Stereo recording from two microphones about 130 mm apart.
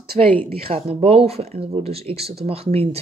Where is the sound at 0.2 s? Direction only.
55° right (ahead or behind).